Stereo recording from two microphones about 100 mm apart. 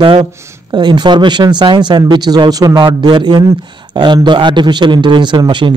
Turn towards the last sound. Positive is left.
turn(degrees=-50)  # may be behind; listen again after turning